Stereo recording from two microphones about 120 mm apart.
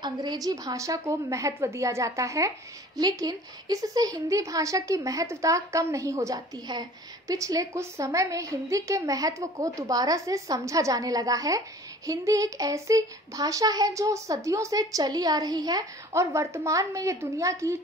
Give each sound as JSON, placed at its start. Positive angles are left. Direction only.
{"t": 0.0, "sound": "a woman's voice", "side_deg": -35}